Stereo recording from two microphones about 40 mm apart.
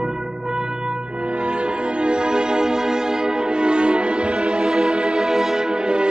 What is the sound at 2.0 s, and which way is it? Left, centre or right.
Music, right.